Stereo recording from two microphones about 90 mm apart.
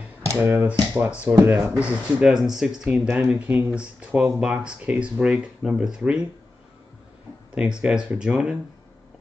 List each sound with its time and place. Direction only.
0.4 s speech: 25° right (ahead or behind)
1.3 s speech: 35° right (ahead or behind)
1.7 s speech: 10° right (ahead or behind)
7.5 s speech: 10° right (ahead or behind)